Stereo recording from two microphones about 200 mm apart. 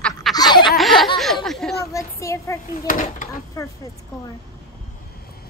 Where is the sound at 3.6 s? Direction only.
15° left (ahead or behind).